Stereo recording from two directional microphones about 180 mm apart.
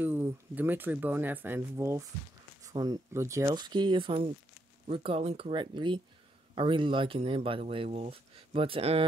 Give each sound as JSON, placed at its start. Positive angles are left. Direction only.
{"t": 0.0, "sound": "speech", "side_deg": -10}